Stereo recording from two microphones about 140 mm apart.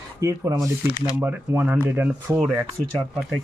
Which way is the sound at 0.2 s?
20° right (ahead or behind).